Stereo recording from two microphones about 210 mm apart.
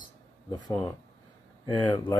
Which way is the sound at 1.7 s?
20° left (ahead or behind).